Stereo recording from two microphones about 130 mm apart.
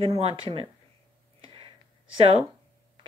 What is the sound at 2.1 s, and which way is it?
Speech, 40° right (ahead or behind).